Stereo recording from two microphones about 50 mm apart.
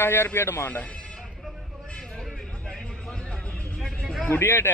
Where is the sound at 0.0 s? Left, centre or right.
Left.